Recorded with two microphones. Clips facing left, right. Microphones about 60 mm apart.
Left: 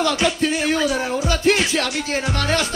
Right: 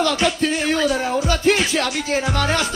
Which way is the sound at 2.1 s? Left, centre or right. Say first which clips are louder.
Right 2 dB; centre.